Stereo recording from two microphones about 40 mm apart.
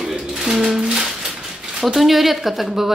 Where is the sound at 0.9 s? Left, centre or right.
Centre.